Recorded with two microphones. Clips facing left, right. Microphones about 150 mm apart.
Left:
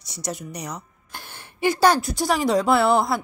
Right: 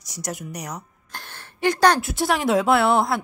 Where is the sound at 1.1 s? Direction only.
10° left (ahead or behind).